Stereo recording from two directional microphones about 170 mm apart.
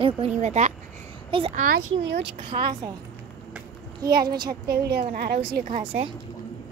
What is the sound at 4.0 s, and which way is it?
Speech, 65° right (ahead or behind).